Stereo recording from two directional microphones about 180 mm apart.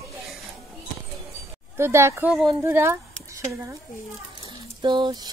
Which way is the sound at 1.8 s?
15° right (ahead or behind).